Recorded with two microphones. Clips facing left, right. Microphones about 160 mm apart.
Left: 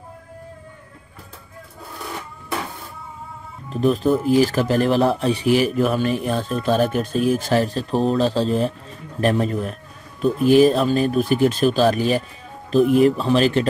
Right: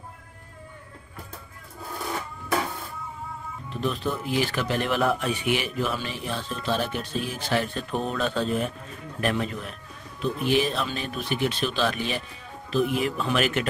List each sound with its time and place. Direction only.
3.7 s speech: 40° left (ahead or behind)